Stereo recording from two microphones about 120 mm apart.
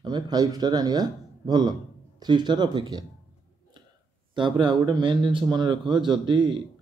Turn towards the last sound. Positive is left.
turn(degrees=-40)  # may be behind; listen again after turning